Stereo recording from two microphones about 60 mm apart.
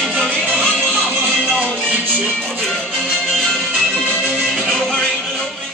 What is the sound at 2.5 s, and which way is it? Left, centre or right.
Music, centre.